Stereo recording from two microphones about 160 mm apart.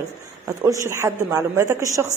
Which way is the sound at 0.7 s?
15° right (ahead or behind).